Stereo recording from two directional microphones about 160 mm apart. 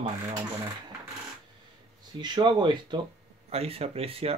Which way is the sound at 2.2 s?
30° right (ahead or behind).